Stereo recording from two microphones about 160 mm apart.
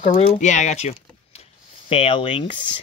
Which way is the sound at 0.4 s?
50° left (ahead or behind).